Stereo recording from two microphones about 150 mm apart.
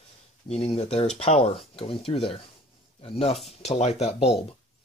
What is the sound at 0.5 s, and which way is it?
Speech, 40° left (ahead or behind).